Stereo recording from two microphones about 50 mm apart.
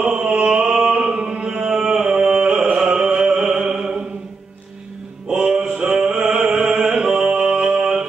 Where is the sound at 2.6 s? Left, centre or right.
Right.